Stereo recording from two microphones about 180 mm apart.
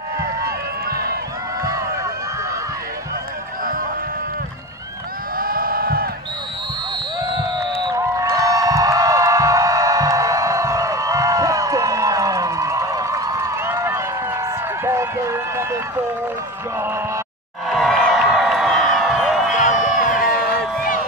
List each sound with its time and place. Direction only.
0.4 s music: 60° right (ahead or behind)
5.4 s a sound: 55° right (ahead or behind)
7.9 s music: 20° right (ahead or behind)
14.9 s run: 15° right (ahead or behind)
17.6 s a sound: centre (ahead or behind)
19.5 s crowd: 45° left (ahead or behind)